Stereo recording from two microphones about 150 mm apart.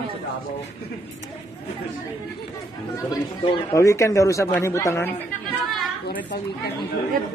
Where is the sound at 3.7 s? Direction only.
20° left (ahead or behind).